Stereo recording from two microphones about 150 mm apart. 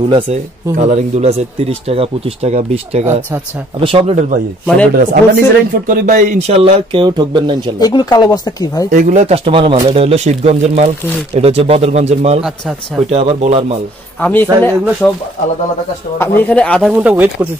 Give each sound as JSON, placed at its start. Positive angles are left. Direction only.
{"t": 0.1, "sound": "speech", "side_deg": -50}
{"t": 4.9, "sound": "speech", "side_deg": -80}
{"t": 5.9, "sound": "speech", "side_deg": -65}
{"t": 7.8, "sound": "speech", "side_deg": 25}
{"t": 8.9, "sound": "speech", "side_deg": -50}
{"t": 14.2, "sound": "speech", "side_deg": 10}
{"t": 16.2, "sound": "speech", "side_deg": 10}
{"t": 16.9, "sound": "speech", "side_deg": -10}